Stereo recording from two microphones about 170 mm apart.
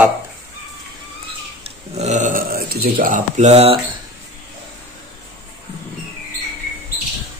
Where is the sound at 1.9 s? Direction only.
45° right (ahead or behind).